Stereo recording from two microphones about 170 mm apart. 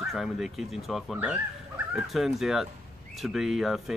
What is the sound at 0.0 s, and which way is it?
Speech, centre (ahead or behind).